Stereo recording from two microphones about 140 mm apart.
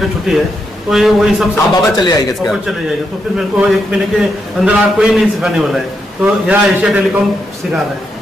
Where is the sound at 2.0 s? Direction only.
30° left (ahead or behind).